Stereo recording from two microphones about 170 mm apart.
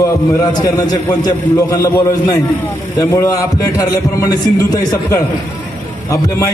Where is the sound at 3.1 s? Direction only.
20° left (ahead or behind).